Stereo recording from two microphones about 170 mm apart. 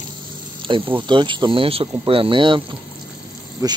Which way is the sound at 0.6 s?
30° right (ahead or behind).